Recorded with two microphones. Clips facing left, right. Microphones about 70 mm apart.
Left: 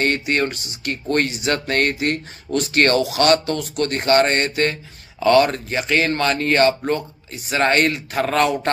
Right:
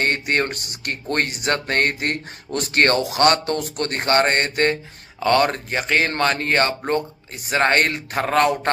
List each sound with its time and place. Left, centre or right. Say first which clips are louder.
0.0 s music: left 1 dB; right